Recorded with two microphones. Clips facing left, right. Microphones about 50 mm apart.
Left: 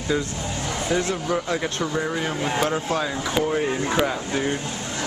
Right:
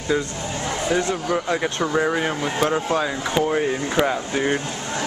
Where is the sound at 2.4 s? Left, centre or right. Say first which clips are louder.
Right 2 dB; centre.